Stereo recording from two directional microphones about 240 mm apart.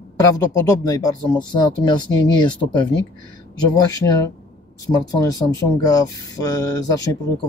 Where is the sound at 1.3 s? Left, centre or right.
Centre.